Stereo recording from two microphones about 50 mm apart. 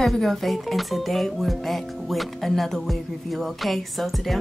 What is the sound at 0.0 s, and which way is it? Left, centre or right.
Speech, centre.